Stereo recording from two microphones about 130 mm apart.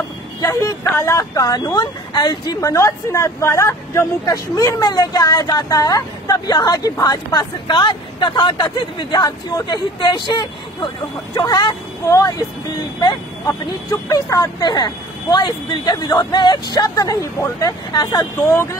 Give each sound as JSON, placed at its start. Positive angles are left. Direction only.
{"t": 0.4, "sound": "speech", "side_deg": 25}